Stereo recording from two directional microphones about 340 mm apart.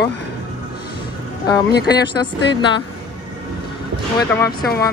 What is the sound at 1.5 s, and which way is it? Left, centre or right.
Speech, centre.